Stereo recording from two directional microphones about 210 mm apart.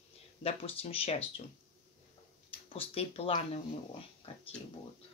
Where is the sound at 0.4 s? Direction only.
30° left (ahead or behind).